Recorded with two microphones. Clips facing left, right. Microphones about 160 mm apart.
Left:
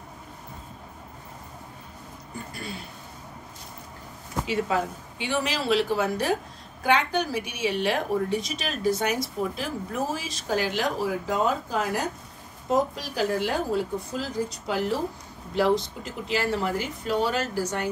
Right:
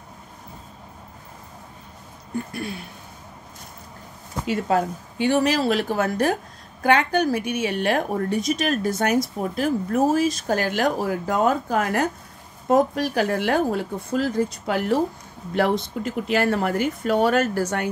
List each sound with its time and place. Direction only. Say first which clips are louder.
4.5 s a woman's voice: right 5 dB; 50° right (ahead or behind)